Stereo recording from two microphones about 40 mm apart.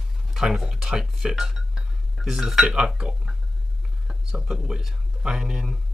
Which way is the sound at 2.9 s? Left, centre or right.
Right.